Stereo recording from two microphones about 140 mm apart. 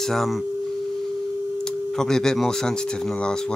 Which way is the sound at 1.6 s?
5° left (ahead or behind).